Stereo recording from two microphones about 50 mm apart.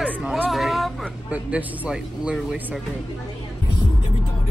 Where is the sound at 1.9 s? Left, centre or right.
Centre.